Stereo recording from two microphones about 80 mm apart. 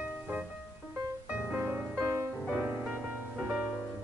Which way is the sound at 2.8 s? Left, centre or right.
Centre.